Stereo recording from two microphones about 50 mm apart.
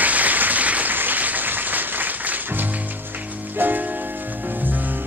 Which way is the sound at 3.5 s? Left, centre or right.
Right.